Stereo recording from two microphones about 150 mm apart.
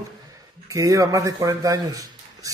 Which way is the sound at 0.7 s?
20° right (ahead or behind).